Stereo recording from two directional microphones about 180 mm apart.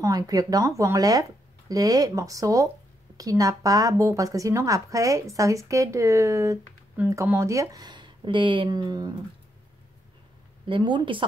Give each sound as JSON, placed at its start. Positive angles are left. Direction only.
{"t": 0.0, "sound": "speech", "side_deg": -20}
{"t": 10.7, "sound": "speech", "side_deg": -25}